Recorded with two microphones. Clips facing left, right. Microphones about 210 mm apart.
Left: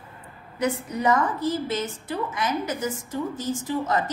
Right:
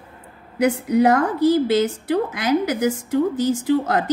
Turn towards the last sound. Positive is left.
turn(degrees=-75)  # may be behind; listen again after turning